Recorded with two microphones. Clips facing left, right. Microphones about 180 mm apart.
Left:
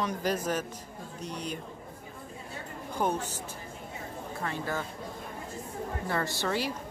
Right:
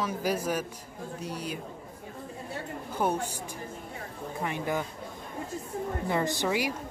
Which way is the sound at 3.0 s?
10° right (ahead or behind).